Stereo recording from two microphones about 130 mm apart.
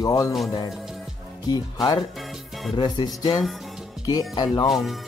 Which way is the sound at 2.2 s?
Centre (ahead or behind).